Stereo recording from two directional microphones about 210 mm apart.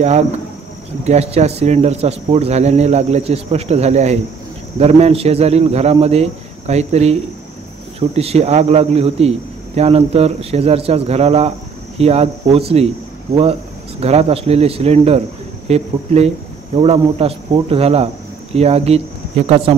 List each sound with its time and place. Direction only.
1.0 s a man's voice: 30° right (ahead or behind)